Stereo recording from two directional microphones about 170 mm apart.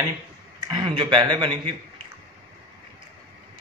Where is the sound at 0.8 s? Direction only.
30° right (ahead or behind).